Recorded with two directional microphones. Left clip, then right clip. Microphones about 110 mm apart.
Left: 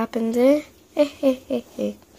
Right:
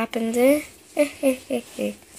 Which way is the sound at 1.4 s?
20° left (ahead or behind).